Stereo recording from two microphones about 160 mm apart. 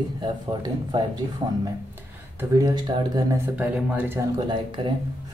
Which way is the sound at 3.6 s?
10° right (ahead or behind).